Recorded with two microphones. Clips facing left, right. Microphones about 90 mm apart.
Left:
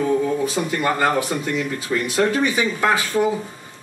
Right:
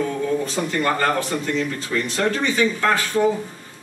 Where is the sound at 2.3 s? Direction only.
10° left (ahead or behind).